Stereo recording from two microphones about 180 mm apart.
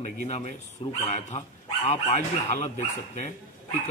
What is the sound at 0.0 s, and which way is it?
Speech, 40° left (ahead or behind).